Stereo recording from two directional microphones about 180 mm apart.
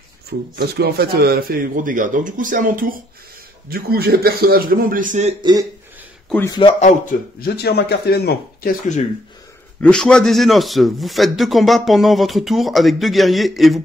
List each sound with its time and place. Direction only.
0.6 s a man's voice: 60° right (ahead or behind); by 5.3 s 45° right (ahead or behind)
5.4 s speech: 20° right (ahead or behind)
6.6 s a man's voice: 40° left (ahead or behind)
7.3 s speech: 60° left (ahead or behind)
9.8 s a man's voice: 5° left (ahead or behind)